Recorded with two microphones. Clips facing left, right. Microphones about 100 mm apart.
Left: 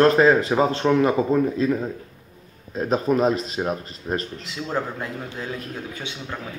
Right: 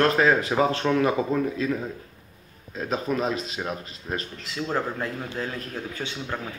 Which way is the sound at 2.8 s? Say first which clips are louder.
Left 6 dB; 30° left (ahead or behind).